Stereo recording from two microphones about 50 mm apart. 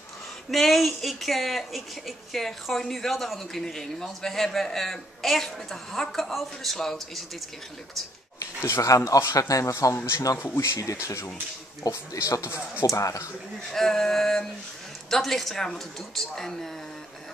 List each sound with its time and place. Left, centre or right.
0.5 s speech: centre
8.6 s speech: left
9.9 s speech: left
12.9 s speech: left
13.7 s a sound: centre